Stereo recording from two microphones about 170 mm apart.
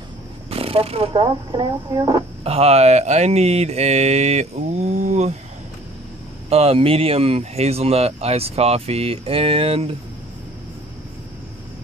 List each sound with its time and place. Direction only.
0.5 s speech: 35° right (ahead or behind)
6.5 s speech: 35° right (ahead or behind)